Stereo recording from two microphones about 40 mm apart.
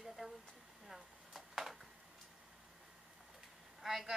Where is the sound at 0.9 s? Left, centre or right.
Centre.